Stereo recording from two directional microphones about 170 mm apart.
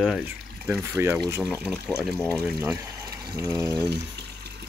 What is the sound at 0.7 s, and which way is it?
Speech, 15° right (ahead or behind).